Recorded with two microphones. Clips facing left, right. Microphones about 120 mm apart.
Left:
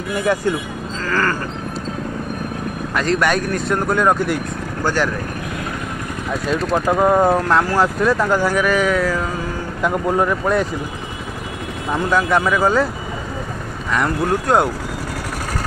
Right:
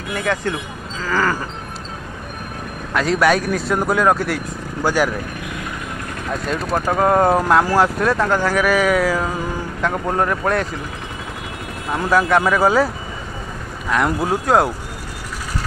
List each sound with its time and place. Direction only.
0.2 s speech: 10° left (ahead or behind)
1.0 s a sound: 5° right (ahead or behind)
2.9 s speech: centre (ahead or behind)
4.8 s a sound: 10° right (ahead or behind)
6.4 s speech: centre (ahead or behind)
9.8 s speech: 5° left (ahead or behind)
11.9 s speech: 5° right (ahead or behind)
13.9 s speech: 5° right (ahead or behind)